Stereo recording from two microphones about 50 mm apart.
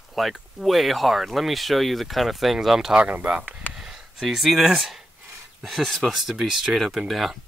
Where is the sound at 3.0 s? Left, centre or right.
Right.